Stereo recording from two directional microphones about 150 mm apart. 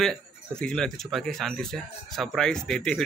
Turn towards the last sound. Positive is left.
turn(degrees=5)  # may be behind; listen again after turning